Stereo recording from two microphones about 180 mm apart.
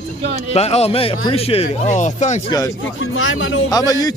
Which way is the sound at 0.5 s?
35° left (ahead or behind).